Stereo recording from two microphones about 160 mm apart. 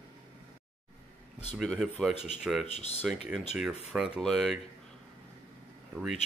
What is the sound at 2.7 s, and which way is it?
Speech, 40° left (ahead or behind).